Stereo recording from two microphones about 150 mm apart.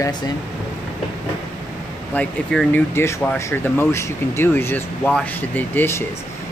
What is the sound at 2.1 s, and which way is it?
Speech, 10° left (ahead or behind).